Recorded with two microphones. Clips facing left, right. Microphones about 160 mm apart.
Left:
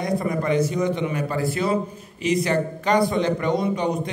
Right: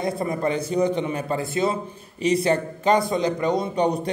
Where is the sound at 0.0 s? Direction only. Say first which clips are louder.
Even; 25° right (ahead or behind).